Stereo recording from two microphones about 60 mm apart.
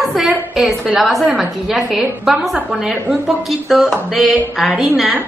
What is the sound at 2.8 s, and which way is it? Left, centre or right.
Speech, centre.